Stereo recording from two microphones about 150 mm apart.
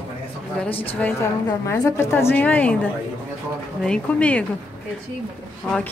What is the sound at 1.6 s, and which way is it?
A woman's voice, 20° left (ahead or behind).